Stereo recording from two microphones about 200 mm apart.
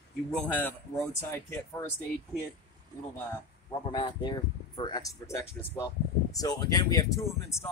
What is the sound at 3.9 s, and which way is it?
Speech, 20° left (ahead or behind).